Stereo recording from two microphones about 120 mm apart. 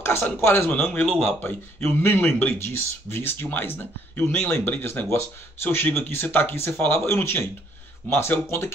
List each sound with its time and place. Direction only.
0.0 s speech: 20° left (ahead or behind)
1.0 s speech: centre (ahead or behind)
1.4 s speech: 20° left (ahead or behind)